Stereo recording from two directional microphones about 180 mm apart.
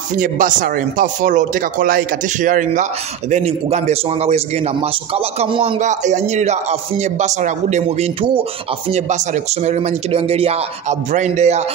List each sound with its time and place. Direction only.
0.1 s speech: 45° right (ahead or behind)